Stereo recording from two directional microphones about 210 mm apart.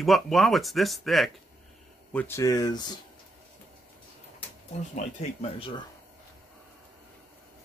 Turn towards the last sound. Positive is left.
turn(degrees=30)  # may be behind; listen again after turning